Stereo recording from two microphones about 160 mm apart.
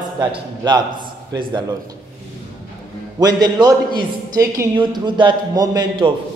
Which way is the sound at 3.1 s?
25° right (ahead or behind).